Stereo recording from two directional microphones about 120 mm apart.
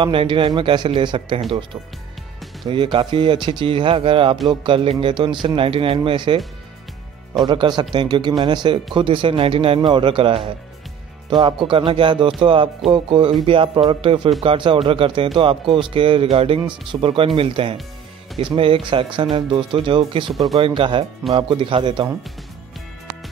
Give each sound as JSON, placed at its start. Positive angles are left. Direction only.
{"t": 0.0, "sound": "speech", "side_deg": -45}
{"t": 7.4, "sound": "speech", "side_deg": -40}
{"t": 20.2, "sound": "speech", "side_deg": 0}
{"t": 20.6, "sound": "speech", "side_deg": -45}